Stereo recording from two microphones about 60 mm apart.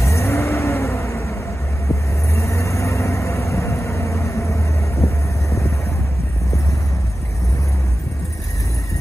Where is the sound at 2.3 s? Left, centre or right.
Left.